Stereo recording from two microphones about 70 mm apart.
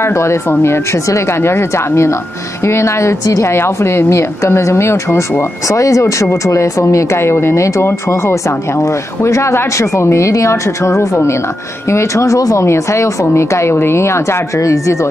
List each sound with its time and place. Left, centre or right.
0.0 s speech: left